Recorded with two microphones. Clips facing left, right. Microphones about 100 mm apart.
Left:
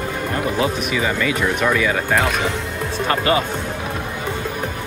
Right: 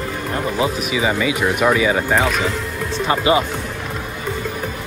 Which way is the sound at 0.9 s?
10° right (ahead or behind).